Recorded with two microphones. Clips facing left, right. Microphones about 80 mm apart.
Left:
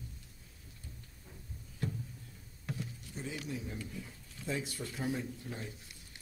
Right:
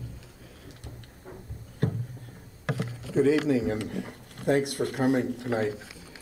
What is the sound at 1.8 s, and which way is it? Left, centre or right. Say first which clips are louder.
Music: right 10 dB; right.